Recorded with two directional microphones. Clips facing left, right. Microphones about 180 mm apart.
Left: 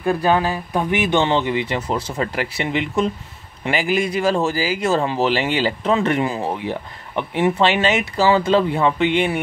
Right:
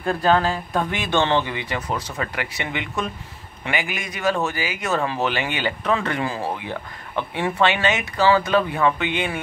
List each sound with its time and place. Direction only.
0.0 s speech: 15° left (ahead or behind)